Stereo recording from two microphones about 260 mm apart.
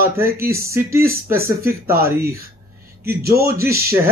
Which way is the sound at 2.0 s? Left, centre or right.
Right.